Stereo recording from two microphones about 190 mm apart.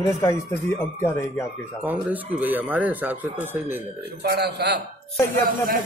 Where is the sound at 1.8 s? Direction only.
10° right (ahead or behind).